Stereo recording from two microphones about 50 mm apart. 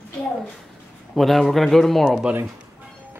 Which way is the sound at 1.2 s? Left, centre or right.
Centre.